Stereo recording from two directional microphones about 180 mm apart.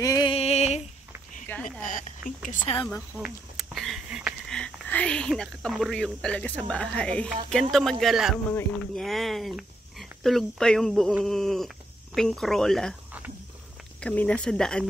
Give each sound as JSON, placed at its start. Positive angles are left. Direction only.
{"t": 0.0, "sound": "a sound", "side_deg": 20}
{"t": 1.5, "sound": "a sound", "side_deg": 10}
{"t": 1.9, "sound": "whispering", "side_deg": 45}
{"t": 3.1, "sound": "speech", "side_deg": -10}
{"t": 3.5, "sound": "a sound", "side_deg": 0}
{"t": 4.5, "sound": "speech", "side_deg": 5}
{"t": 8.5, "sound": "speech", "side_deg": 10}
{"t": 9.0, "sound": "speech", "side_deg": 0}
{"t": 14.0, "sound": "speech", "side_deg": 5}